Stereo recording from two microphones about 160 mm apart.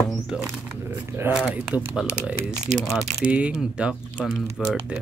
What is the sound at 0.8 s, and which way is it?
Speech, 15° right (ahead or behind).